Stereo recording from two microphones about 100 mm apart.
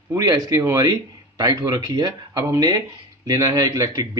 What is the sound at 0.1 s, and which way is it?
Speech, 35° right (ahead or behind).